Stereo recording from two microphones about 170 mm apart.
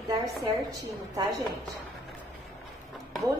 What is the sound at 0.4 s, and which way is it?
A woman's voice, 20° right (ahead or behind).